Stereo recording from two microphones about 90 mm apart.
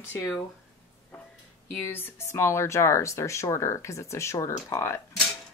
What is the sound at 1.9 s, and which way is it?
Speech, 25° left (ahead or behind).